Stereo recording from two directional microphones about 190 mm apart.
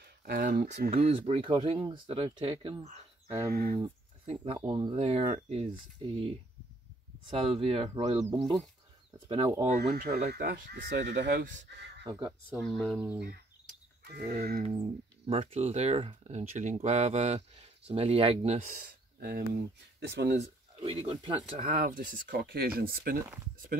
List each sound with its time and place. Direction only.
0.0 s speech: 55° right (ahead or behind)
0.8 s speech: 35° right (ahead or behind)
8.3 s speech: 20° right (ahead or behind)
9.3 s speech: 30° right (ahead or behind)
9.9 s speech: 50° right (ahead or behind)
12.1 s speech: 20° right (ahead or behind)
12.5 s speech: centre (ahead or behind)
14.0 s a sound: 55° right (ahead or behind)
15.2 s speech: 30° right (ahead or behind); by 20.1 s 55° right (ahead or behind)
20.2 s a sound: 35° right (ahead or behind)
21.0 s speech: 25° right (ahead or behind); by 23.2 s 50° right (ahead or behind)